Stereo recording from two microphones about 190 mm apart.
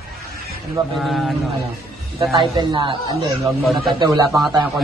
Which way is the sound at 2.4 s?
25° right (ahead or behind).